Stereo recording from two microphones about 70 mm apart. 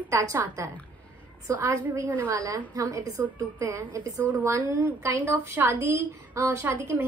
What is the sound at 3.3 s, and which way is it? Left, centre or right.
A woman's voice, right.